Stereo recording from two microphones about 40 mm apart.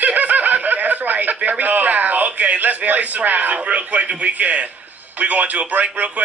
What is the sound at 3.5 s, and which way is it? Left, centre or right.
A man's voice, right.